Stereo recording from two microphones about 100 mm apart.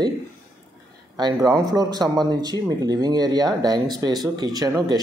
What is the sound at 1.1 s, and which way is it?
Speech, 40° right (ahead or behind).